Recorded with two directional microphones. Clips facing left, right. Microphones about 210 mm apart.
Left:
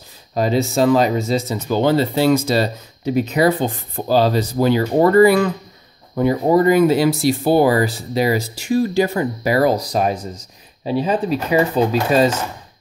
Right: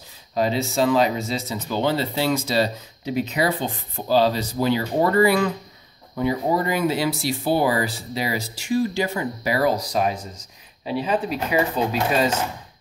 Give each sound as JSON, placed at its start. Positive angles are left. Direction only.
{"t": 0.3, "sound": "speech", "side_deg": 45}